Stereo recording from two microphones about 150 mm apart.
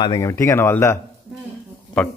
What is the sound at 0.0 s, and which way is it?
Speech, 25° left (ahead or behind).